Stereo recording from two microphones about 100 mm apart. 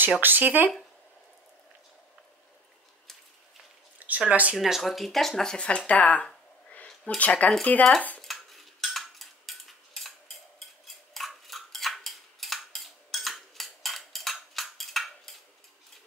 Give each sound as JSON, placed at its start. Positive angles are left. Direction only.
{"t": 0.2, "sound": "speech", "side_deg": -20}
{"t": 4.0, "sound": "speech", "side_deg": -15}
{"t": 4.6, "sound": "speech", "side_deg": 0}
{"t": 8.2, "sound": "cutlery", "side_deg": 0}
{"t": 10.9, "sound": "scissors", "side_deg": 0}